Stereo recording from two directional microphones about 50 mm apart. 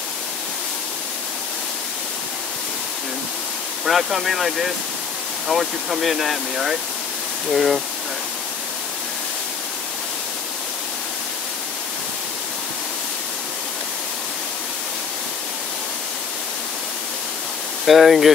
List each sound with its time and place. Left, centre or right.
3.8 s speech: centre
17.8 s speech: centre